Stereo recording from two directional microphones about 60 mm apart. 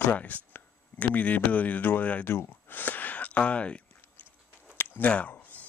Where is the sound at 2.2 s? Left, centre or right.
Left.